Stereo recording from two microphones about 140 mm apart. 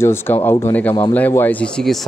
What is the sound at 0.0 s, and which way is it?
Speech, 15° left (ahead or behind).